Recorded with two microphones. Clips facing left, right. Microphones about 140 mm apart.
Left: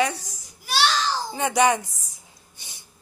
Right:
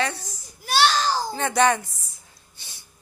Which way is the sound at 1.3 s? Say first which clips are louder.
Left 2 dB; 15° left (ahead or behind).